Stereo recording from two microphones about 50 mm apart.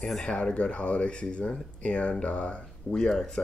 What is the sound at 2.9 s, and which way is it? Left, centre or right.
Speech, centre.